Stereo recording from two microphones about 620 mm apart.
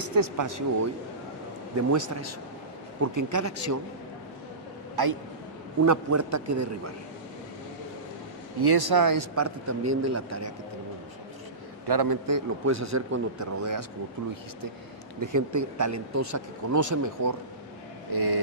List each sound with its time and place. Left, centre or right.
0.0 s speech: right
1.8 s speech: right
5.0 s a man's voice: right
8.5 s speech: right
11.9 s speech: right
15.1 s speech: right